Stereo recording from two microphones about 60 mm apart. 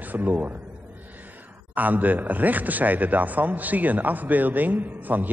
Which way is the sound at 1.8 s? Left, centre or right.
Right.